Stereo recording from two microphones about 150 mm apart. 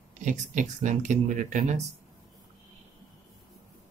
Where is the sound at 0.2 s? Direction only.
55° right (ahead or behind).